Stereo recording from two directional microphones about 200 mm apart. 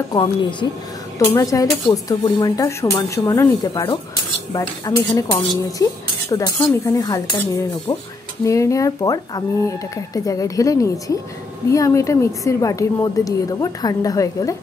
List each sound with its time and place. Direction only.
0.1 s a woman's voice: 25° left (ahead or behind)